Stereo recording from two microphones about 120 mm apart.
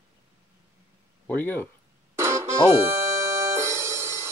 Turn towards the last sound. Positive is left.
turn(degrees=-25)  # may be behind; listen again after turning